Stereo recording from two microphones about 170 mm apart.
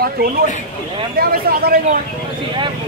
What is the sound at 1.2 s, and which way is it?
Speech, 65° right (ahead or behind).